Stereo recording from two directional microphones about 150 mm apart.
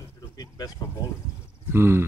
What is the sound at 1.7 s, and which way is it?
Speech, 15° right (ahead or behind).